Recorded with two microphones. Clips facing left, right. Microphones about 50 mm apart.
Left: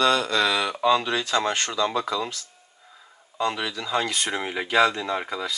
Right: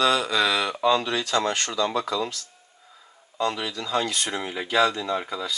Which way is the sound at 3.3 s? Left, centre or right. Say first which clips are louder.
Even; left.